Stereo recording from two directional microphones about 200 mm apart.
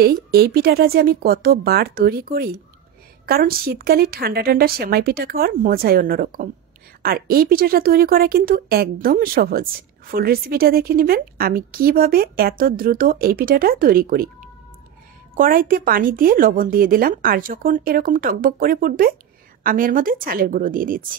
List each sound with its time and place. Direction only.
0.0 s speech: 50° right (ahead or behind)
15.3 s speech: 45° right (ahead or behind)